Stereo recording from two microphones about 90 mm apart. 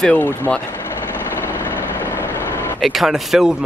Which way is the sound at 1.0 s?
25° left (ahead or behind).